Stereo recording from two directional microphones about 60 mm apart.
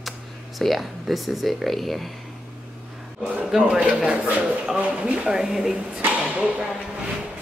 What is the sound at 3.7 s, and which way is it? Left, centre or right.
Speech, centre.